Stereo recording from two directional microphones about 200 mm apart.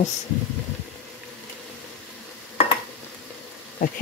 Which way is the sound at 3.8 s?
45° left (ahead or behind).